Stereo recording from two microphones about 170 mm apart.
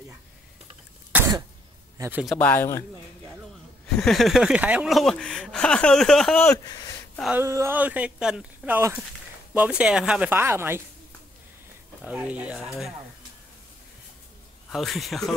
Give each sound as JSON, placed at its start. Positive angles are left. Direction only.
{"t": 1.1, "sound": "throat clearing", "side_deg": -15}
{"t": 2.0, "sound": "a man's voice", "side_deg": -10}
{"t": 2.2, "sound": "speech", "side_deg": 10}
{"t": 3.8, "sound": "speech", "side_deg": 5}
{"t": 6.4, "sound": "speech", "side_deg": 20}
{"t": 7.3, "sound": "speech", "side_deg": -15}
{"t": 12.0, "sound": "speech", "side_deg": -10}
{"t": 14.7, "sound": "speech", "side_deg": 0}